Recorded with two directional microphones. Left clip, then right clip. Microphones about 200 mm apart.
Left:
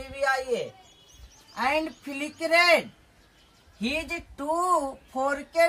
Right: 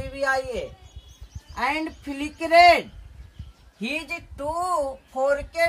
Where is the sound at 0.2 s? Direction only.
20° right (ahead or behind).